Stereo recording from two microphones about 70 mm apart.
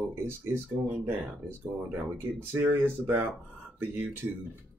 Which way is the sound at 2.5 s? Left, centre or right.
Right.